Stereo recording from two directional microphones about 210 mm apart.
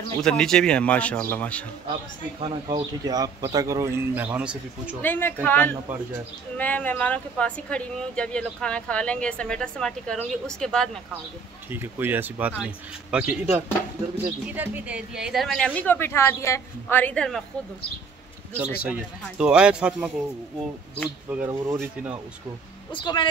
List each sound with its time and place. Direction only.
0.2 s speech: 5° left (ahead or behind)
2.4 s speech: 20° right (ahead or behind)
5.0 s speech: 10° left (ahead or behind)
11.7 s speech: 10° right (ahead or behind)
18.8 s speech: 5° right (ahead or behind)
21.3 s speech: 10° right (ahead or behind)
22.9 s speech: 25° left (ahead or behind)